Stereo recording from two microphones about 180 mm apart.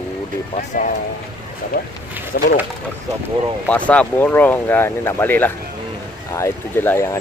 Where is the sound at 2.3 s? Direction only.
65° left (ahead or behind).